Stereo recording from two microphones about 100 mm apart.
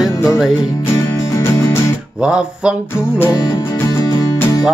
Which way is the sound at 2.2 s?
10° right (ahead or behind).